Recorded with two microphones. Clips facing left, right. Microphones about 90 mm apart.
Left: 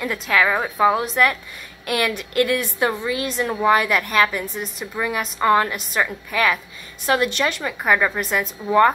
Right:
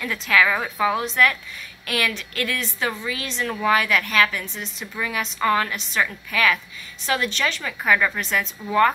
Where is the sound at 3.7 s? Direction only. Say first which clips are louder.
Left 2 dB; 10° left (ahead or behind).